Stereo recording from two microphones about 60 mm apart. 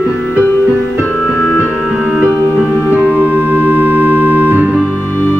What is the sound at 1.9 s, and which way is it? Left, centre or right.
Music, centre.